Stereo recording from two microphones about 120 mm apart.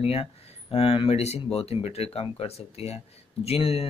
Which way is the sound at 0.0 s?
55° left (ahead or behind).